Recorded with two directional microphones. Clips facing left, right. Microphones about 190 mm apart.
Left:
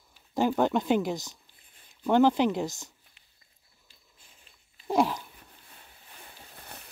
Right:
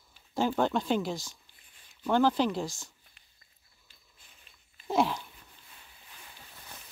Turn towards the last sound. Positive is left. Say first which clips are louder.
# left 2 dB
turn(degrees=10)  # may be behind; listen again after turning